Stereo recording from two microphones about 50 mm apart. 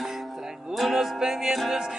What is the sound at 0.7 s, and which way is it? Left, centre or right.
Music, centre.